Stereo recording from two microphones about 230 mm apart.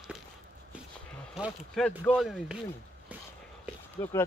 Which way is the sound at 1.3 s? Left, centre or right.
Centre.